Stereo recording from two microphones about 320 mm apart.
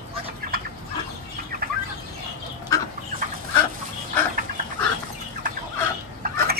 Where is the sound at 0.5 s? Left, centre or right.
Right.